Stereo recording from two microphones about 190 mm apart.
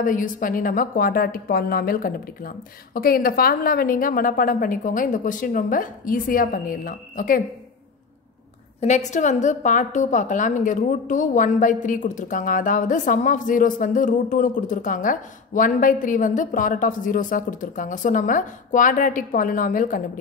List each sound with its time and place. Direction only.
0.0 s a woman's voice: 45° left (ahead or behind)
8.8 s a woman's voice: 40° left (ahead or behind)